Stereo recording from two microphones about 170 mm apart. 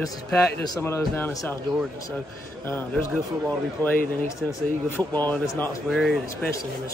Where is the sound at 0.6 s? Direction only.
20° left (ahead or behind).